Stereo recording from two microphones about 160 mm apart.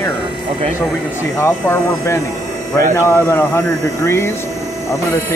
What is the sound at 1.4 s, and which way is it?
Speech, 15° left (ahead or behind).